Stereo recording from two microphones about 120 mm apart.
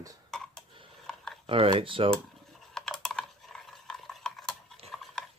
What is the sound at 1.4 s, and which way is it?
Speech, 50° right (ahead or behind).